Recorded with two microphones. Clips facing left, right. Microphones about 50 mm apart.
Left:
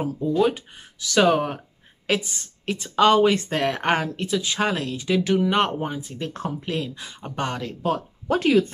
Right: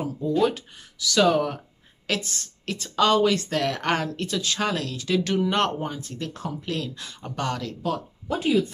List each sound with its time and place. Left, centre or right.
0.4 s a woman's voice: centre
0.9 s speech: left
2.0 s a woman's voice: centre
4.1 s speech: centre
6.2 s speech: left
6.6 s a woman's voice: left
8.3 s speech: left